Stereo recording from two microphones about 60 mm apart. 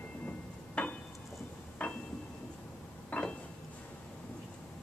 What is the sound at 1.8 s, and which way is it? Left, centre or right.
Music, centre.